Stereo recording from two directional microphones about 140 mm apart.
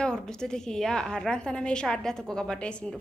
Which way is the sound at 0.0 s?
5° left (ahead or behind).